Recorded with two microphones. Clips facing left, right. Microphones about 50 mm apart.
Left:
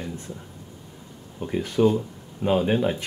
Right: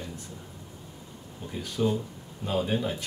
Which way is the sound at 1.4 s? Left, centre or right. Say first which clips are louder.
Left 8 dB; left.